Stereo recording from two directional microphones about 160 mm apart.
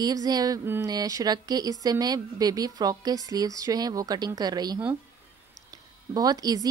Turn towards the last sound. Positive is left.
turn(degrees=-25)  # may be behind; listen again after turning